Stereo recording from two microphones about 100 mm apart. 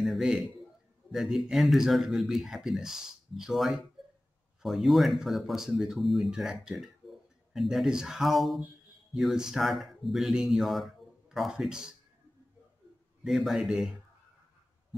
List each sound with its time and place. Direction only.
0.0 s a sound: centre (ahead or behind)
1.1 s speech: centre (ahead or behind)
13.2 s speech: centre (ahead or behind)